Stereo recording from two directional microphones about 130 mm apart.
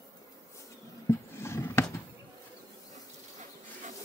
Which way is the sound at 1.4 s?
20° left (ahead or behind).